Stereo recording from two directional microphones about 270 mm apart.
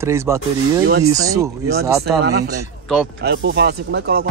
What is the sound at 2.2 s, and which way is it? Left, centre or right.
Speech, right.